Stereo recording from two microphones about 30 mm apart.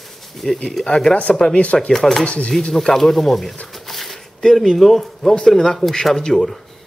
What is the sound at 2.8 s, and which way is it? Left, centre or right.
Speech, centre.